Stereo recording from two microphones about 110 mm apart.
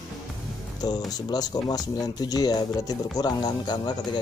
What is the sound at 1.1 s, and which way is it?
Speech, 35° left (ahead or behind).